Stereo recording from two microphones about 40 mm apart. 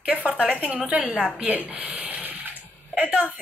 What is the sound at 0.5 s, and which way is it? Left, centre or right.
A woman's voice, right.